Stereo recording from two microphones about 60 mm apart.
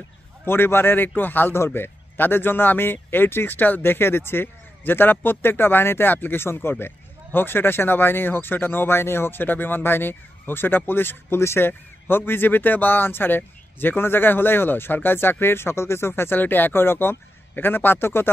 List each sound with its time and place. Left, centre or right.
0.5 s speech: left